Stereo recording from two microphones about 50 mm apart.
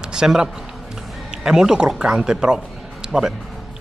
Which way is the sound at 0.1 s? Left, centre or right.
Centre.